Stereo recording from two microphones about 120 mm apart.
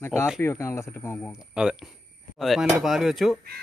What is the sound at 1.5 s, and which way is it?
A man's voice, 5° right (ahead or behind).